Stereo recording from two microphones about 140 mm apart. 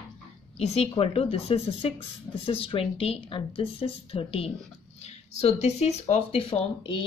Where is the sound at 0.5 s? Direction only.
45° left (ahead or behind).